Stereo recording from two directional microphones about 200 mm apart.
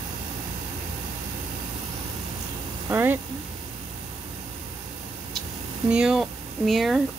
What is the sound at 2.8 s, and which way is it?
Vehicle, 10° right (ahead or behind).